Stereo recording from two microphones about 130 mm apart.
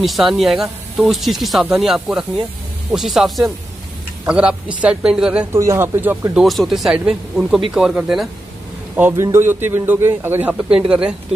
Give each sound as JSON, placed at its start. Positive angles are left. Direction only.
{"t": 0.0, "sound": "a man's voice", "side_deg": 0}
{"t": 5.5, "sound": "speech", "side_deg": -20}
{"t": 6.4, "sound": "speech", "side_deg": 0}
{"t": 8.9, "sound": "a man's voice", "side_deg": -20}
{"t": 10.5, "sound": "a man's voice", "side_deg": -5}